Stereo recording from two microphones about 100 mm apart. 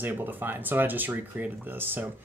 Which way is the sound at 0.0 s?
20° right (ahead or behind).